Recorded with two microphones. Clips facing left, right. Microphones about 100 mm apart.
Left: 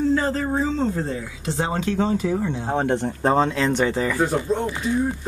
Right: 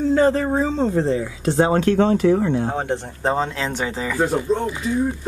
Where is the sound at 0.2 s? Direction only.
30° right (ahead or behind).